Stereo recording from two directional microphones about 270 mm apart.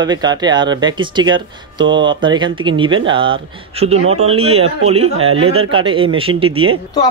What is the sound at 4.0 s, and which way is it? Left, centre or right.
Speech, right.